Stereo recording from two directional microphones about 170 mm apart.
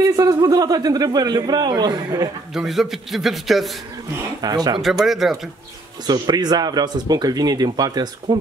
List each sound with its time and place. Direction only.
0.0 s speech: 20° right (ahead or behind)
2.5 s a man's voice: centre (ahead or behind)
4.4 s speech: 20° right (ahead or behind)
5.0 s a man's voice: centre (ahead or behind)
6.0 s speech: 25° right (ahead or behind)